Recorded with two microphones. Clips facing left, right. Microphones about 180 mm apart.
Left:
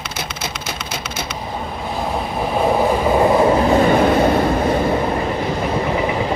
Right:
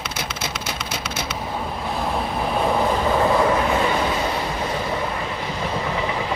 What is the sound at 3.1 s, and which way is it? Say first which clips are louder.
Vehicle: left 5 dB; 25° left (ahead or behind).